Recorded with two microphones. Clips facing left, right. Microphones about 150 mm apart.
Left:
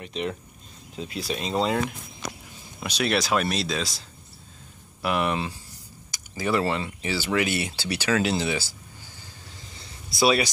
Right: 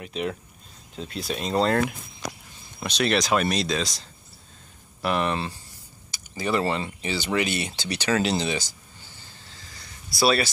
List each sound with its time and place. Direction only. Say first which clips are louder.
0.0 s speech: right 1 dB; centre (ahead or behind)
5.0 s speech: even; 10° left (ahead or behind)
9.8 s a sound: left 1 dB; 20° left (ahead or behind)